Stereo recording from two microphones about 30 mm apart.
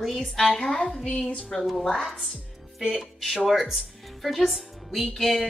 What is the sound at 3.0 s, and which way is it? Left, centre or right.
A woman's voice, centre.